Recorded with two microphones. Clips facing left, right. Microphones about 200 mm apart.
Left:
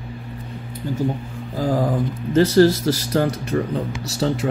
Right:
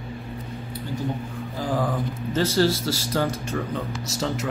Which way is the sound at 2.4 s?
65° left (ahead or behind).